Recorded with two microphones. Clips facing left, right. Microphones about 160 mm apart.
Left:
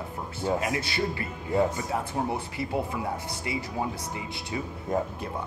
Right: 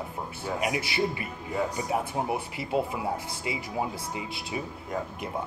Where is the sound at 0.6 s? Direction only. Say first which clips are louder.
Right 1 dB; 20° right (ahead or behind).